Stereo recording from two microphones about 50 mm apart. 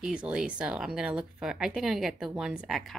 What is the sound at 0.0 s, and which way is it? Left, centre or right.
A woman's voice, centre.